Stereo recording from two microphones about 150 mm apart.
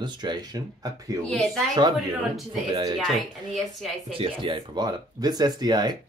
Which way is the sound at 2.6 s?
35° right (ahead or behind).